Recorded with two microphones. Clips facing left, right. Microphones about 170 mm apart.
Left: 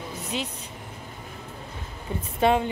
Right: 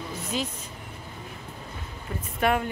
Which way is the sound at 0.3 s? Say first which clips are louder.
Right 1 dB; 25° left (ahead or behind).